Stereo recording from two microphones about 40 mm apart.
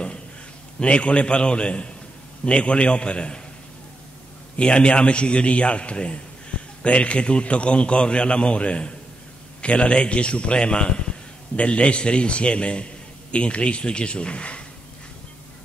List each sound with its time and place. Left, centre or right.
0.7 s a man's voice: left
4.6 s a man's voice: left